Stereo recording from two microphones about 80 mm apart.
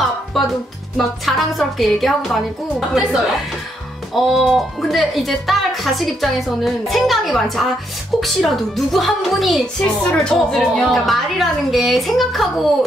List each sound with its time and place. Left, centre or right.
0.0 s music: centre
0.9 s speech: centre